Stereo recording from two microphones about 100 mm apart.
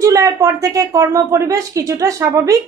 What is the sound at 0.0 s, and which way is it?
A woman's voice, 30° right (ahead or behind).